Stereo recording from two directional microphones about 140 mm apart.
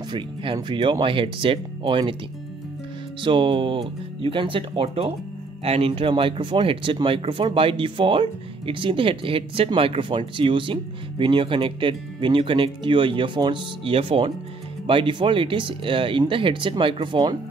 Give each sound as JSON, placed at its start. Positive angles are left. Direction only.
{"t": 0.1, "sound": "speech", "side_deg": -35}
{"t": 3.2, "sound": "speech", "side_deg": -35}